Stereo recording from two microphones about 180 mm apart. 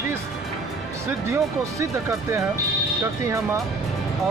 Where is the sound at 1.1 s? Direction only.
15° right (ahead or behind).